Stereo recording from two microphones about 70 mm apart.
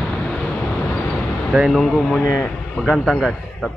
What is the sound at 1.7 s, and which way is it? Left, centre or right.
A man's voice, centre.